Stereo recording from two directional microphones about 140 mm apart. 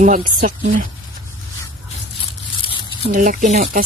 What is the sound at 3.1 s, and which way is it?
Speech, 65° right (ahead or behind).